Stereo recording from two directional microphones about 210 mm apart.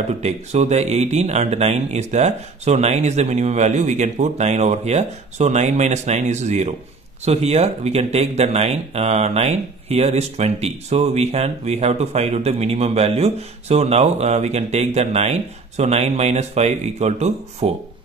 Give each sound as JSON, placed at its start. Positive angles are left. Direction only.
{"t": 0.2, "sound": "speech", "side_deg": -30}